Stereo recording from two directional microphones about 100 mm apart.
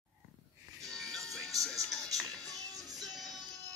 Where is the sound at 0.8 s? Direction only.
5° left (ahead or behind).